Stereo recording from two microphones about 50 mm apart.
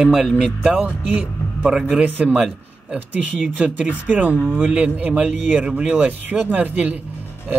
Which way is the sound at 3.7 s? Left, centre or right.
Right.